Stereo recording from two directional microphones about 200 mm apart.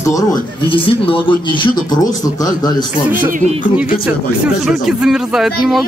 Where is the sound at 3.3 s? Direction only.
35° right (ahead or behind).